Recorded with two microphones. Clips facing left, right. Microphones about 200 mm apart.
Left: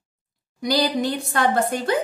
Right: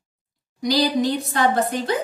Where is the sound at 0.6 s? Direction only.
55° left (ahead or behind).